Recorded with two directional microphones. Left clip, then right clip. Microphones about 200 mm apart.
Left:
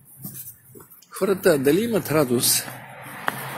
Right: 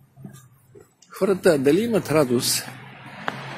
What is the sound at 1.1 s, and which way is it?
Speech, 20° right (ahead or behind).